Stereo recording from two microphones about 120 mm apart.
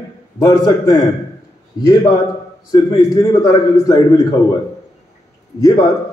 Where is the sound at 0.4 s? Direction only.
30° left (ahead or behind).